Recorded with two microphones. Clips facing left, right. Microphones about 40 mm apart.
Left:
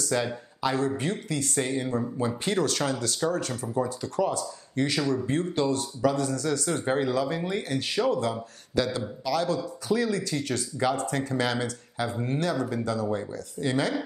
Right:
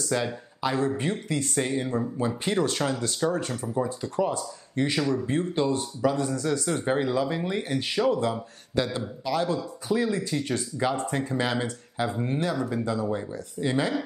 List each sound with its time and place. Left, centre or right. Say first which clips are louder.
0.1 s speech: even; centre
0.6 s speech: even; right
1.6 s speech: even; centre
3.6 s speech: even; centre
4.0 s speech: even; right
6.8 s speech: even; centre